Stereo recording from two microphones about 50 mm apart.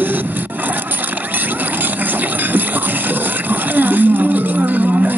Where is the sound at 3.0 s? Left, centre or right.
Right.